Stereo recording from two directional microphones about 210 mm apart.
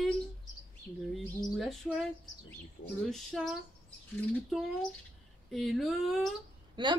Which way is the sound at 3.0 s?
Centre (ahead or behind).